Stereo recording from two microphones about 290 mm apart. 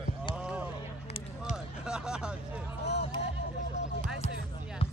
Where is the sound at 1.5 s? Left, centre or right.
Centre.